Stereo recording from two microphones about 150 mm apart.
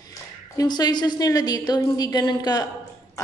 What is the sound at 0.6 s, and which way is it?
Speech, 25° left (ahead or behind).